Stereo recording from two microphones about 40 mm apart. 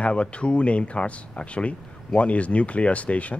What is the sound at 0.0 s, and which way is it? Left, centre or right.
Speech, left.